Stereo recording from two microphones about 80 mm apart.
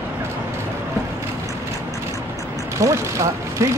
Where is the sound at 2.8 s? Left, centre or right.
Right.